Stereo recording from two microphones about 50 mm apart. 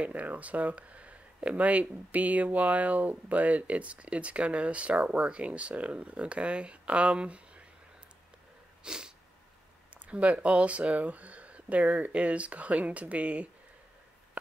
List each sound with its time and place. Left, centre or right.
0.0 s speech: right
8.8 s sneeze: centre
9.9 s speech: right